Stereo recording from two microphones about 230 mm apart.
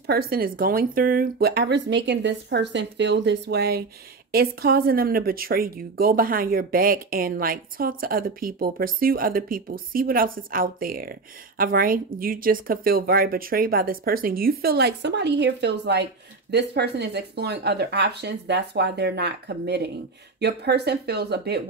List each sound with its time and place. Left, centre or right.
0.0 s speech: right